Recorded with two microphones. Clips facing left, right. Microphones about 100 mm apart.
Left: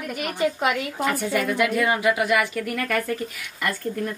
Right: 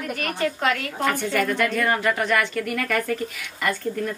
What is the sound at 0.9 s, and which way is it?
A woman's voice, 5° left (ahead or behind).